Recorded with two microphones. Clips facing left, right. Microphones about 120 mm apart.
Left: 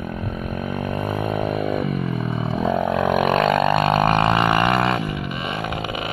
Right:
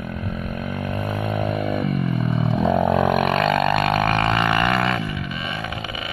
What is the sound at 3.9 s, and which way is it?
Music, 25° left (ahead or behind).